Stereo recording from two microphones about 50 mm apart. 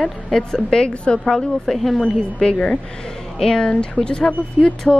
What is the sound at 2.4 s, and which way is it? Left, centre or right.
A woman's voice, centre.